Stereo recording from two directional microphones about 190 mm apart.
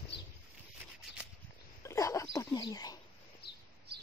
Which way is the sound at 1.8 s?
15° left (ahead or behind).